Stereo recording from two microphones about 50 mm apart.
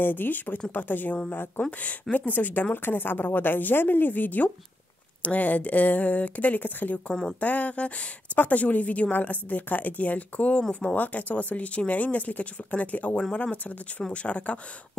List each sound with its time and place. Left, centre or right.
0.0 s a woman's voice: left